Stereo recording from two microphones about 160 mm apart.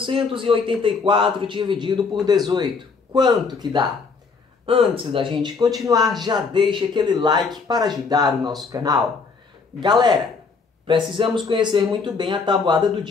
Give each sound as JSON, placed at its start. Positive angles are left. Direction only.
{"t": 0.0, "sound": "a man's voice", "side_deg": -35}